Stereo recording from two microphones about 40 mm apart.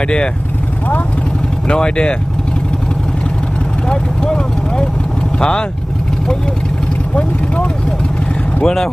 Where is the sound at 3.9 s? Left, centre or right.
Left.